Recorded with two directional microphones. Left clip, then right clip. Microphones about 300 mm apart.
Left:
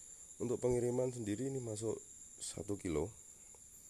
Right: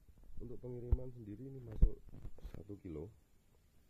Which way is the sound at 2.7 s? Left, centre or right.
Left.